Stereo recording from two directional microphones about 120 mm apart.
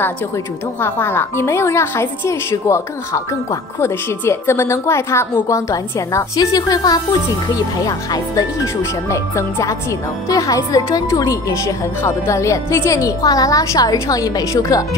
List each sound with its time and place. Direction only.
0.7 s a woman's voice: 15° left (ahead or behind)